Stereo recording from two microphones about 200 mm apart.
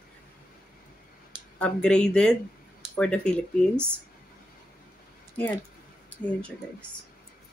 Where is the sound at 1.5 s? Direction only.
5° left (ahead or behind).